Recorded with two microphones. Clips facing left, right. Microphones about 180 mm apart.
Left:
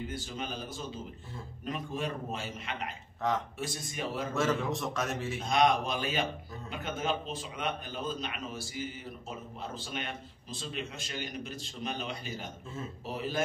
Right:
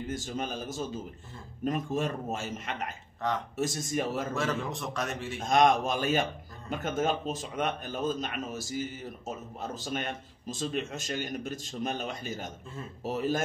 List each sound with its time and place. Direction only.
0.1 s a man's voice: 45° right (ahead or behind)
3.2 s a man's voice: centre (ahead or behind)
3.5 s a man's voice: 45° right (ahead or behind)
4.3 s a man's voice: centre (ahead or behind)
5.4 s a man's voice: 45° right (ahead or behind)